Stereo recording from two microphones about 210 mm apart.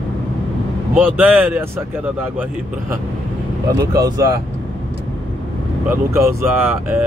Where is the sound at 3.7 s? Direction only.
15° right (ahead or behind).